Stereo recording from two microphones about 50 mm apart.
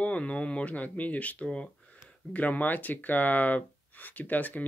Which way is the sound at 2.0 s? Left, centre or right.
Left.